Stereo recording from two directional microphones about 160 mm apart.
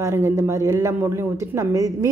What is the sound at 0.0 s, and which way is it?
Speech, 15° right (ahead or behind).